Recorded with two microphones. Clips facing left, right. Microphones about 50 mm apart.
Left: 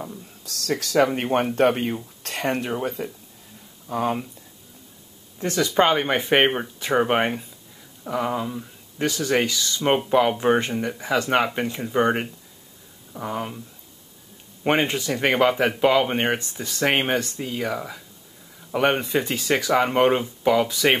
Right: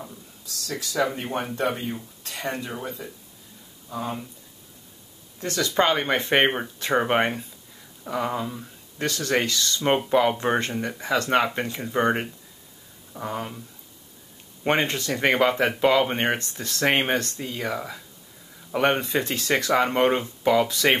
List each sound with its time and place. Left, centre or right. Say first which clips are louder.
0.5 s speech: left 7 dB; left
2.2 s a sound: left 5 dB; left
2.5 s speech: left 6 dB; left
3.9 s speech: left 7 dB; left
5.4 s speech: left 3 dB; centre
14.6 s speech: left 2 dB; centre